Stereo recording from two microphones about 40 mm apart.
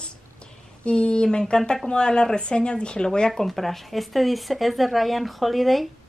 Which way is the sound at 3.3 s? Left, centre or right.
Centre.